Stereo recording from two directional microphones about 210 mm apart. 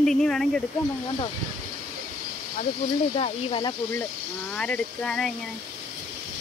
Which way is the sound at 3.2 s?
25° left (ahead or behind).